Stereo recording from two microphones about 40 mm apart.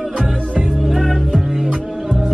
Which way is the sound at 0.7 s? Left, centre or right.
Centre.